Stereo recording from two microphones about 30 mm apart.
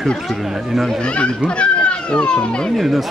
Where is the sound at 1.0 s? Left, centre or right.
Left.